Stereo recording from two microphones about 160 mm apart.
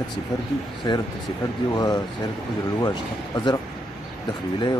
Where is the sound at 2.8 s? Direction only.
25° left (ahead or behind).